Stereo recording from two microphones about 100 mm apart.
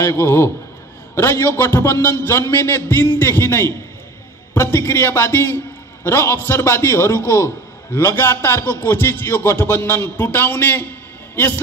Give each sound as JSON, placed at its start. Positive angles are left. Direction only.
{"t": 0.0, "sound": "a man's voice", "side_deg": 25}